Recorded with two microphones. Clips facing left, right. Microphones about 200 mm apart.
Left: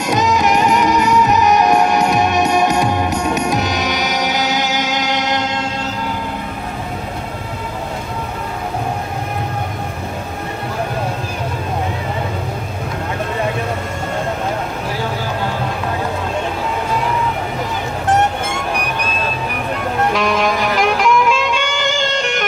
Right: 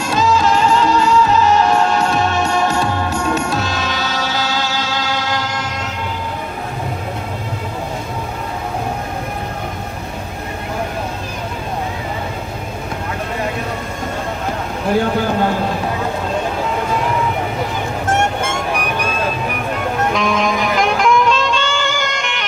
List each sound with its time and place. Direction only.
0.0 s music: 20° left (ahead or behind)
20.1 s music: centre (ahead or behind); by 22.4 s 35° left (ahead or behind)